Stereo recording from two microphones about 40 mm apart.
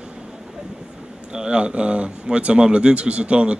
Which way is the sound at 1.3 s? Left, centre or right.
Right.